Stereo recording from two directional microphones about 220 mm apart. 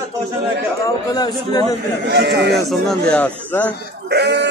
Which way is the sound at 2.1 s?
50° right (ahead or behind).